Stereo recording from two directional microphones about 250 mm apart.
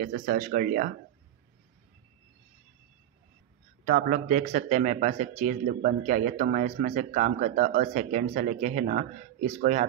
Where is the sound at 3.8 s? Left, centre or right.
Right.